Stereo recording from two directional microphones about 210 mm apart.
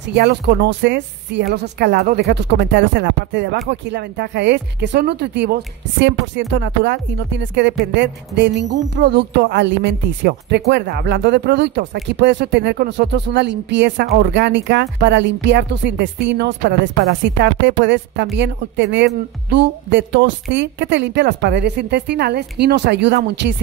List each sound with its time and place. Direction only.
0.1 s speech: 50° right (ahead or behind)